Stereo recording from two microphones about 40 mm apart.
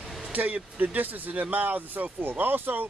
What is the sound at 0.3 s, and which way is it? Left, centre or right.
Speech, right.